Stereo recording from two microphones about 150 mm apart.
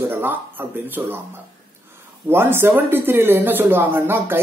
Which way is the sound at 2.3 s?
15° right (ahead or behind).